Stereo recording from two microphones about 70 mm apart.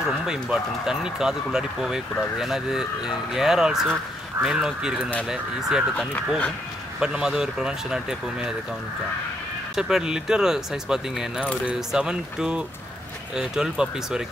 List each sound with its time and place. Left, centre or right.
0.0 s speech: centre
5.9 s speech: centre
7.0 s speech: centre
9.8 s speech: centre